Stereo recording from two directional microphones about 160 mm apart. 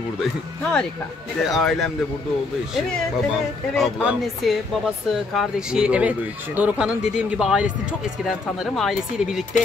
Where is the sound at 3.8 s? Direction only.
5° right (ahead or behind).